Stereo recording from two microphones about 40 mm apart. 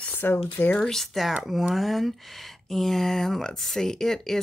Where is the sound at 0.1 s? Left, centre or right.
Left.